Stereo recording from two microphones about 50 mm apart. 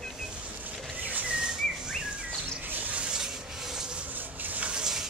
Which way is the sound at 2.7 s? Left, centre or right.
Right.